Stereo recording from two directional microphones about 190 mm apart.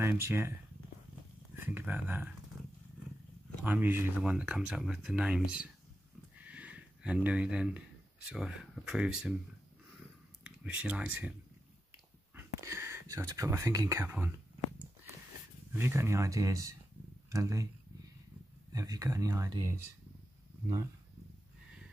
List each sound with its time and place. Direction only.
0.0 s speech: 10° right (ahead or behind)
3.6 s speech: 10° right (ahead or behind)
6.3 s a sound: 10° right (ahead or behind)
8.3 s speech: 5° right (ahead or behind)
10.4 s speech: 5° right (ahead or behind)
12.4 s speech: 15° right (ahead or behind)
15.7 s speech: 15° right (ahead or behind)
18.7 s speech: 20° right (ahead or behind)